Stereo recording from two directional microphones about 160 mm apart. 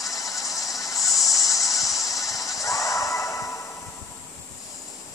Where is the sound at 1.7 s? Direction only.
Centre (ahead or behind).